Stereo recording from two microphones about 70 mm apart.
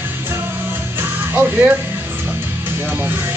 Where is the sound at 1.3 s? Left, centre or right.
Right.